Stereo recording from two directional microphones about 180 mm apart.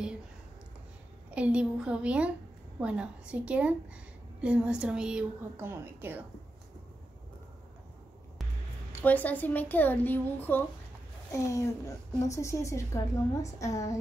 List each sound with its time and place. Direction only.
1.3 s a woman's voice: 5° right (ahead or behind)
9.0 s a child's voice: 10° left (ahead or behind)